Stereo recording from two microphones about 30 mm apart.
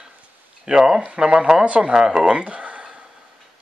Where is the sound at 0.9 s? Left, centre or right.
Right.